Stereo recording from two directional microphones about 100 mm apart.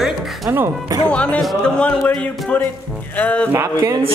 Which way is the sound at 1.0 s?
15° left (ahead or behind).